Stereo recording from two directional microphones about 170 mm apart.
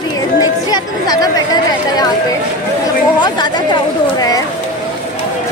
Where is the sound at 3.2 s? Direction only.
25° left (ahead or behind).